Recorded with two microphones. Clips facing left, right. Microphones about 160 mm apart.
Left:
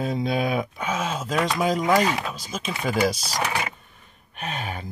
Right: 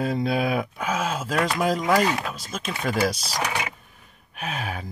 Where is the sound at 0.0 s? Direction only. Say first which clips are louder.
Right 1 dB; centre (ahead or behind).